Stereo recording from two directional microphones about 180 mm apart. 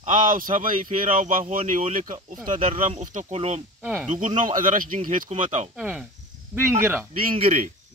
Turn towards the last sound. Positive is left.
turn(degrees=-35)  # may be behind; listen again after turning